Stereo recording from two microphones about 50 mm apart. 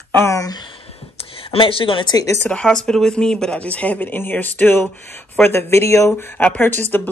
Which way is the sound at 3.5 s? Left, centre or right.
Left.